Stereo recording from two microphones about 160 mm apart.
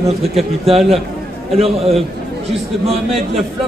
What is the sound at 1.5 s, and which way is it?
A man's voice, 40° right (ahead or behind).